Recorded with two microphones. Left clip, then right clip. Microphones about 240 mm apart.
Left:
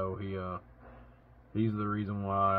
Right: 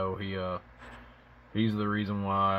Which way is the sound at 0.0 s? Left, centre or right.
Centre.